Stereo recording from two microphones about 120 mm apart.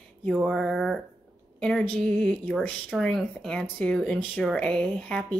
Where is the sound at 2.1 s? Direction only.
10° left (ahead or behind).